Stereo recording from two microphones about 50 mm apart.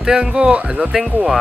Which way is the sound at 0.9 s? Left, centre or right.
Centre.